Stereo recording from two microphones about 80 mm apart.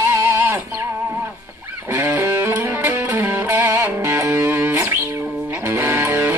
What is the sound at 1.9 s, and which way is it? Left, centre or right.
Music, right.